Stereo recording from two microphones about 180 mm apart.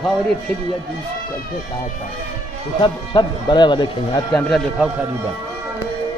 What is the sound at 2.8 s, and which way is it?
Speech, 25° left (ahead or behind).